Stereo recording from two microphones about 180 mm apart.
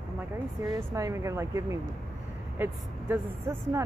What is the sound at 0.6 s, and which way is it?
Speech, 20° right (ahead or behind).